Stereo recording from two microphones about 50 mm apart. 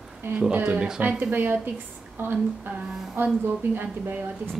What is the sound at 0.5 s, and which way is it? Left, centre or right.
A woman's voice, right.